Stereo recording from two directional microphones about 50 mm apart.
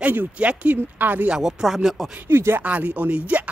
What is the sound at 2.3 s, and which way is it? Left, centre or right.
Speech, right.